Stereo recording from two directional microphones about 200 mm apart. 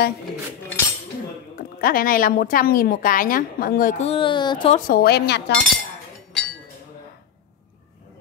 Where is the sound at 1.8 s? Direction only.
45° left (ahead or behind); by 4.7 s 25° left (ahead or behind).